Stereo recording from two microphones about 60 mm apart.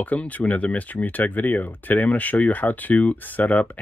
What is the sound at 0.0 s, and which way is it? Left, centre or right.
Speech, left.